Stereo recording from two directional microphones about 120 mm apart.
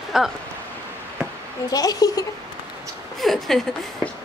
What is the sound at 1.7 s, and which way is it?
Speech, 30° left (ahead or behind).